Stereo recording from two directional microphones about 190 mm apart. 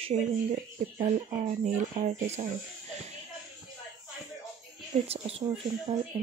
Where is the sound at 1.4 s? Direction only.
35° right (ahead or behind).